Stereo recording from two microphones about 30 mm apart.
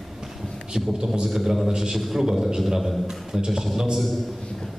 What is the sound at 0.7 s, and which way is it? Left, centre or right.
A man's voice, centre.